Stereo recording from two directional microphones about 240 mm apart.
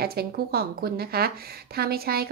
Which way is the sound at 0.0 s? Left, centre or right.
Right.